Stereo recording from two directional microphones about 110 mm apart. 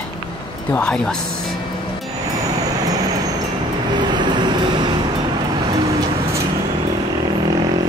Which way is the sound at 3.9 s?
45° right (ahead or behind).